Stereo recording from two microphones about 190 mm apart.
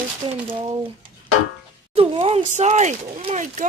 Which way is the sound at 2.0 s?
30° right (ahead or behind).